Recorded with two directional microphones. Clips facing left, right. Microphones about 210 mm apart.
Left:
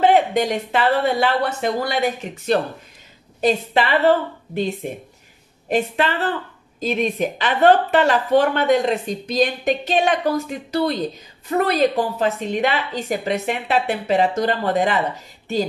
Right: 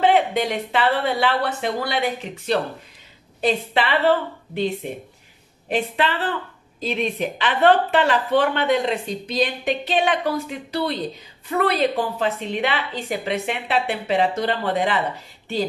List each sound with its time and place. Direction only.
0.0 s speech: 45° left (ahead or behind)